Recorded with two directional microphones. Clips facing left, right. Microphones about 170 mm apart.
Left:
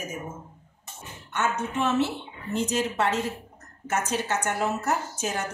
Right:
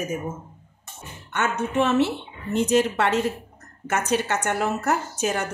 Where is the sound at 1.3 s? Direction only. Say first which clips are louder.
Right 4 dB; 70° right (ahead or behind).